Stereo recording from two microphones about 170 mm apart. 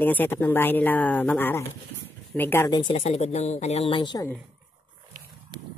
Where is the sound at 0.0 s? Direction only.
10° left (ahead or behind).